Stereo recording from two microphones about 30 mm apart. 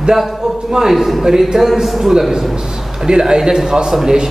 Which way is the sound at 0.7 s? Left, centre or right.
Centre.